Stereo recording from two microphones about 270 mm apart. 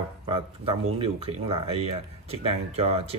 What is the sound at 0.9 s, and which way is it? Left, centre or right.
Speech, right.